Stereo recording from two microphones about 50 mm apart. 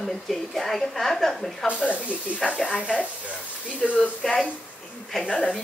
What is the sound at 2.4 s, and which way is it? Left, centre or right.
Speech, left.